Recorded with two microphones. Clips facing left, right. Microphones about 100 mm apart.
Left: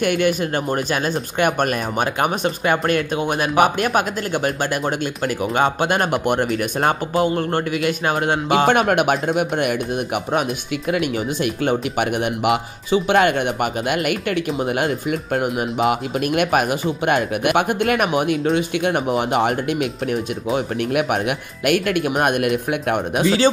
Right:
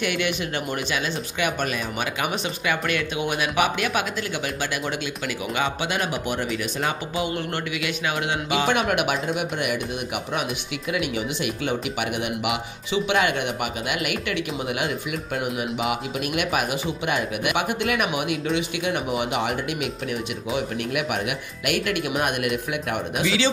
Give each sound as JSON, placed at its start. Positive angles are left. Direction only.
{"t": 0.0, "sound": "speech", "side_deg": 45}